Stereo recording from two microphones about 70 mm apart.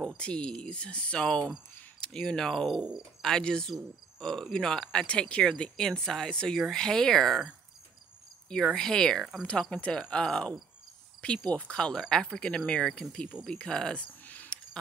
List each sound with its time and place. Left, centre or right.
0.2 s speech: centre
8.6 s speech: centre
14.2 s a sound: left